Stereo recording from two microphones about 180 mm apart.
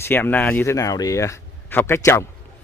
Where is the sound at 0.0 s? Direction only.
10° left (ahead or behind).